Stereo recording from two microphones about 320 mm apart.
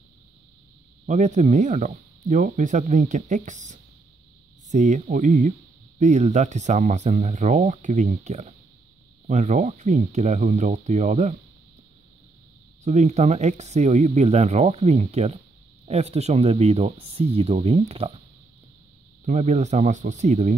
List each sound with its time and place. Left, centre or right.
1.0 s speech: right
12.8 s speech: right
19.2 s speech: right